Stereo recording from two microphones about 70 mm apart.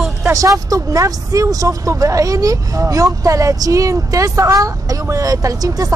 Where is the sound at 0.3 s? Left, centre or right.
Right.